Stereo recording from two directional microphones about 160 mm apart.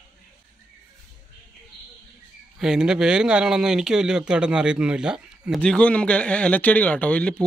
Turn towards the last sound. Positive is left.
turn(degrees=5)  # may be behind; listen again after turning